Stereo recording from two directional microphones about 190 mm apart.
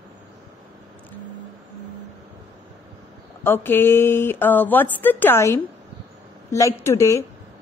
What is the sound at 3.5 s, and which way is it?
Speech, 10° left (ahead or behind).